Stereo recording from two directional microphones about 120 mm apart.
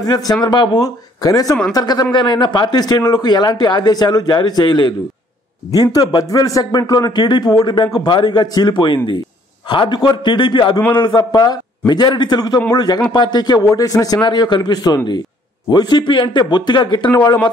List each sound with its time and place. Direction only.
0.0 s speech: 30° left (ahead or behind)
5.9 s speech: 30° left (ahead or behind)